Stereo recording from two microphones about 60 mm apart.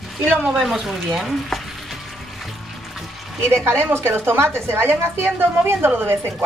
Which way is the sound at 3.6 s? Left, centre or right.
Right.